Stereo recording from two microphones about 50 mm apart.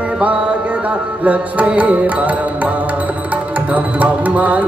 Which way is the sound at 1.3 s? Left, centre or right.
Right.